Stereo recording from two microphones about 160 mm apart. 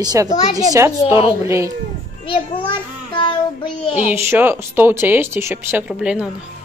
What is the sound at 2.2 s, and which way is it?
A child's voice, 30° left (ahead or behind).